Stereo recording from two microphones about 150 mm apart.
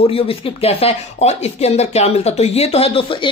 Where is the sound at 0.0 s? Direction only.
40° left (ahead or behind).